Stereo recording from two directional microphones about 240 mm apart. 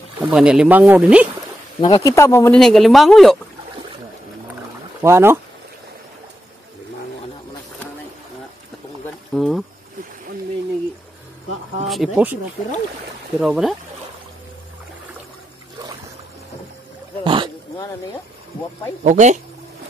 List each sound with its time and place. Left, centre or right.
0.3 s speech: centre
1.8 s speech: centre
5.0 s speech: centre
9.3 s speech: centre
11.9 s speech: centre
13.4 s speech: centre
17.2 s dog: centre
19.0 s speech: right